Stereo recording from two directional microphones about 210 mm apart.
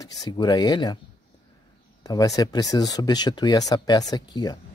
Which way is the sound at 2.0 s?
15° left (ahead or behind).